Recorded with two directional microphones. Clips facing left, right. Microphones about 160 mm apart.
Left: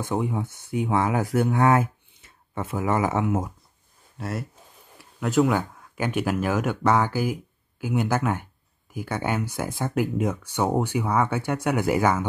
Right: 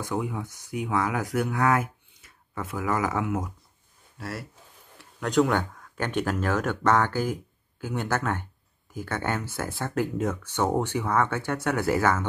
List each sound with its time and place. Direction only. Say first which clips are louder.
0.0 s speech: left 3 dB; 25° left (ahead or behind)
4.9 s speech: left 1 dB; 5° left (ahead or behind)